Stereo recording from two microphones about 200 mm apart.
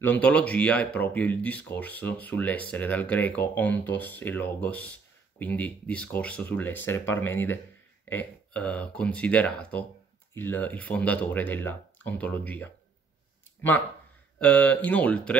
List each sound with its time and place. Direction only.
0.0 s speech: 10° left (ahead or behind)